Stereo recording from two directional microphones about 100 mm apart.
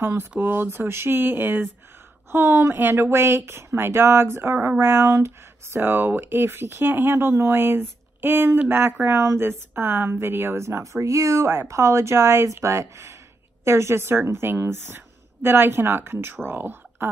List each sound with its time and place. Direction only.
0.0 s speech: 30° right (ahead or behind)